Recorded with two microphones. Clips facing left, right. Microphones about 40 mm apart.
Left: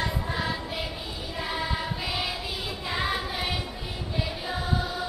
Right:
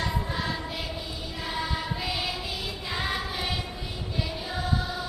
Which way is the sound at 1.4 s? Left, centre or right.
Centre.